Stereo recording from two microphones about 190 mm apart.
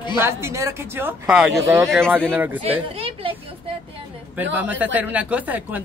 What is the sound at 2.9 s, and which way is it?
Speech, 30° right (ahead or behind).